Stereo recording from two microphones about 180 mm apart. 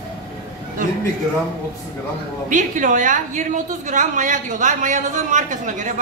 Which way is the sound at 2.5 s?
45° right (ahead or behind).